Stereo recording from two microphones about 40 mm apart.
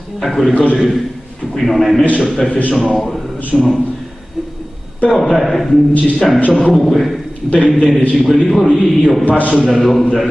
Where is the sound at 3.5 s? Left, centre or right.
Centre.